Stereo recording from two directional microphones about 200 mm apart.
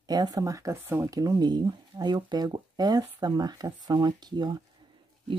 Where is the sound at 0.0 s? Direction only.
20° right (ahead or behind).